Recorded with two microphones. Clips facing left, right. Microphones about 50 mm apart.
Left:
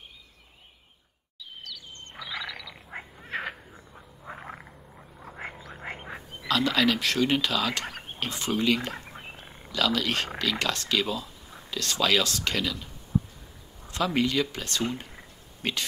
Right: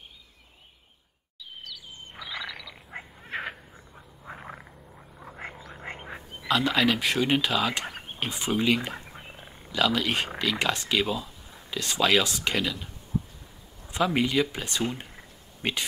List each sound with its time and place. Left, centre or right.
1.6 s frog: centre
4.3 s frog: centre
6.4 s speech: centre